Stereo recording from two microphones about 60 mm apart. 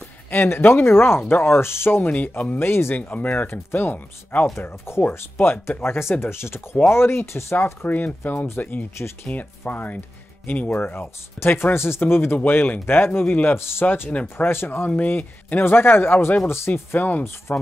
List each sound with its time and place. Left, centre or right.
0.3 s speech: left
2.7 s speech: left
3.1 s speech: left
4.6 s speech: left
7.6 s speech: left
11.3 s speech: left
14.9 s speech: left